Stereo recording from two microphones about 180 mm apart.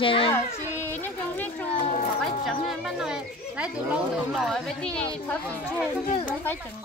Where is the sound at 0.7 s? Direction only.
10° left (ahead or behind).